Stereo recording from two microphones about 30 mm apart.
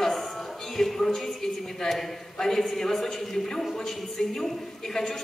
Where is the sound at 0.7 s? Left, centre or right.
Centre.